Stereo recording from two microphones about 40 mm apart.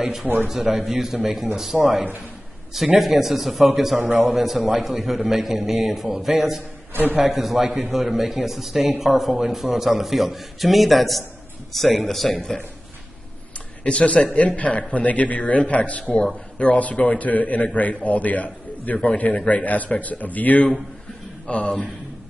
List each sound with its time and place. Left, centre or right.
0.5 s a man's voice: centre
3.0 s a man's voice: centre
4.0 s a man's voice: right
4.3 s a man's voice: centre
6.9 s a man's voice: right
7.2 s a man's voice: centre
13.8 s a man's voice: left
21.5 s speech: left